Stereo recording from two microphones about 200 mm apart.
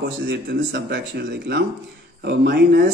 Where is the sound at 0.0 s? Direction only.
60° right (ahead or behind).